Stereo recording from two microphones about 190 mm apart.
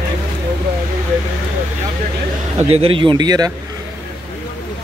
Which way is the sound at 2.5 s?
30° right (ahead or behind).